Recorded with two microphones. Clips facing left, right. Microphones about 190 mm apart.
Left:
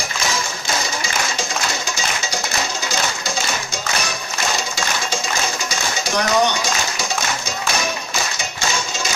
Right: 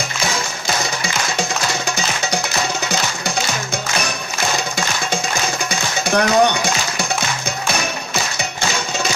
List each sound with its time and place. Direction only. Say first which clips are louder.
5.7 s music: right 4 dB; 60° right (ahead or behind)